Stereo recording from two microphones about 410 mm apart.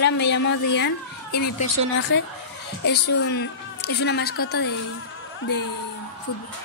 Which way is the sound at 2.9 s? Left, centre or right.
Left.